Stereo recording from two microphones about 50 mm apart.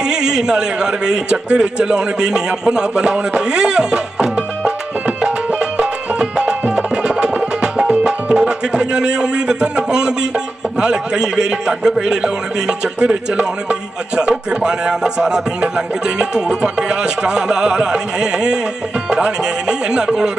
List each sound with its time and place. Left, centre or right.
0.0 s a man's voice: centre
7.0 s music: centre